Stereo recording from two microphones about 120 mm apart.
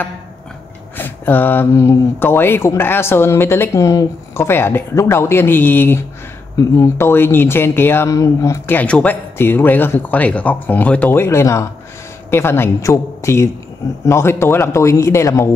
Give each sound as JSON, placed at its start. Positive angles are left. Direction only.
{"t": 0.9, "sound": "speech", "side_deg": 15}
{"t": 6.5, "sound": "speech", "side_deg": 30}
{"t": 8.6, "sound": "speech", "side_deg": 10}